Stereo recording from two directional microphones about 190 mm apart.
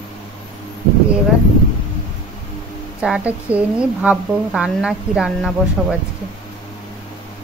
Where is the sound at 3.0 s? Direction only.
5° right (ahead or behind).